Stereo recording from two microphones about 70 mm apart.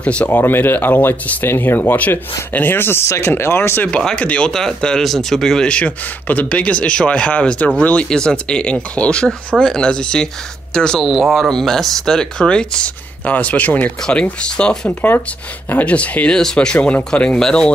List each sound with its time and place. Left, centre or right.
0.0 s speech: centre
0.3 s speech: left
3.9 s speech: centre
14.9 s speech: left; by 17.6 s centre